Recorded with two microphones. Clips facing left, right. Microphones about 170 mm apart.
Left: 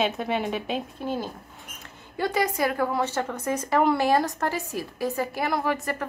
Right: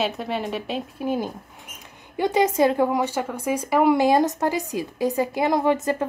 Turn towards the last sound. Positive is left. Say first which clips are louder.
# right 6 dB
turn(degrees=-20)  # may be behind; listen again after turning